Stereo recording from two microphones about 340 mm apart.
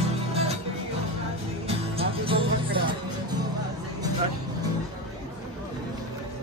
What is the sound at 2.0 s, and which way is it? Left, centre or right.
Music, centre.